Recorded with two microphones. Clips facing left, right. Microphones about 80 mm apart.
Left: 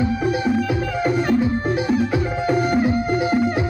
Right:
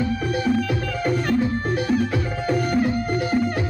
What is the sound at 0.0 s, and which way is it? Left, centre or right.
Music, centre.